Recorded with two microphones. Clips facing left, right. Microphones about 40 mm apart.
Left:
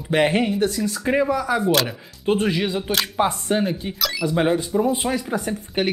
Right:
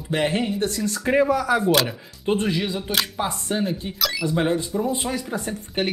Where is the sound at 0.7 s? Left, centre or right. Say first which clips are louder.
Left 1 dB; centre.